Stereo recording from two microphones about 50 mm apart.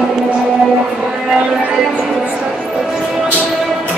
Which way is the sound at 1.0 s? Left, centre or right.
Centre.